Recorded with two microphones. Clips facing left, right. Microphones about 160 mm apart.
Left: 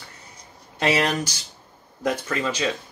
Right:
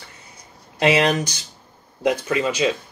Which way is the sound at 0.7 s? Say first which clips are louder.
Right 4 dB; 20° right (ahead or behind).